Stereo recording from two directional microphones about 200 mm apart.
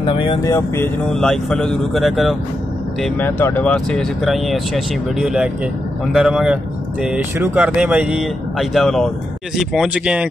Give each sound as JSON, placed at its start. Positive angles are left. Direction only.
{"t": 0.0, "sound": "speech", "side_deg": 25}
{"t": 1.1, "sound": "speech", "side_deg": 5}
{"t": 3.0, "sound": "speech", "side_deg": 10}